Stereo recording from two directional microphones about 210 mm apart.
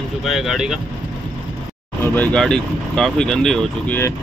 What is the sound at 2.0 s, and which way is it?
Speech, 10° left (ahead or behind).